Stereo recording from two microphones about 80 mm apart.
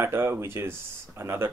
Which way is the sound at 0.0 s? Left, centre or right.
Right.